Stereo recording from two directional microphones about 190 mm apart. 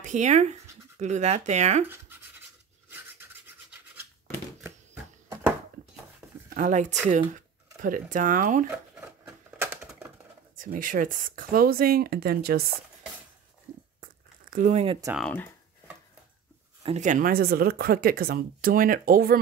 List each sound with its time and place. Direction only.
0.0 s speech: 40° right (ahead or behind)
1.9 s scratch: 10° right (ahead or behind)
2.9 s filing: 10° right (ahead or behind)
6.5 s speech: 40° right (ahead or behind)
9.6 s typewriter: 10° right (ahead or behind)
10.5 s speech: 45° right (ahead or behind)
14.0 s crumpling: 45° right (ahead or behind)
15.1 s speech: 5° left (ahead or behind)
16.8 s speech: 40° right (ahead or behind)